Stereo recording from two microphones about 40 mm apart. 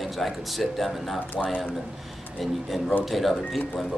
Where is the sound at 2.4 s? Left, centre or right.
Centre.